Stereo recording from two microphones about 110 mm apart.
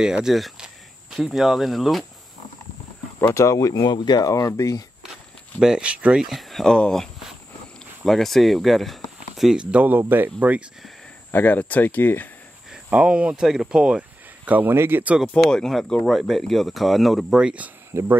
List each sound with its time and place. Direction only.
0.0 s speech: 5° right (ahead or behind)
3.3 s speech: 30° left (ahead or behind)
5.6 s speech: 10° right (ahead or behind)
11.3 s speech: 15° left (ahead or behind)
12.7 s speech: 10° right (ahead or behind)
15.3 s speech: 5° left (ahead or behind)
17.9 s speech: 20° right (ahead or behind)